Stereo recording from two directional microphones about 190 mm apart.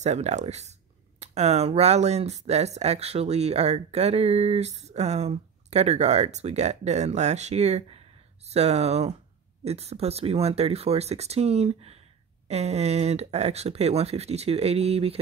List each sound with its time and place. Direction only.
0.0 s speech: 35° right (ahead or behind)